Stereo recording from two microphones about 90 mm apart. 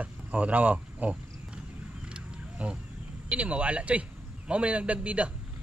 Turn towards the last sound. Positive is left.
turn(degrees=-15)  # may be behind; listen again after turning